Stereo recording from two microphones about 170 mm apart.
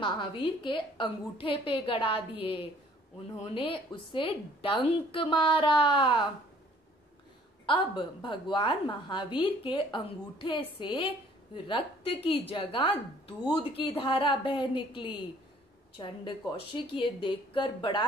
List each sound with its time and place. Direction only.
0.0 s a woman's voice: 30° left (ahead or behind)
7.6 s a woman's voice: 30° left (ahead or behind)